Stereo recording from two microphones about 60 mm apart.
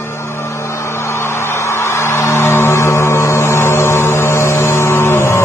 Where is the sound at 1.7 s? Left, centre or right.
Left.